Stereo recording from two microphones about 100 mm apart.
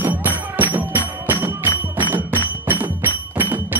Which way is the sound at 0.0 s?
15° right (ahead or behind).